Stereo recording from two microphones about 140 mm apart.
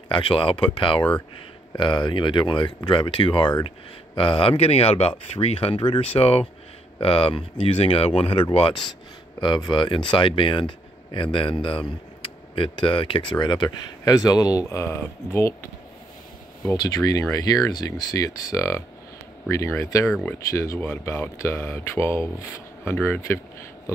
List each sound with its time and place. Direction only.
0.1 s speech: 40° left (ahead or behind); by 15.5 s 20° left (ahead or behind)
16.7 s speech: 30° left (ahead or behind)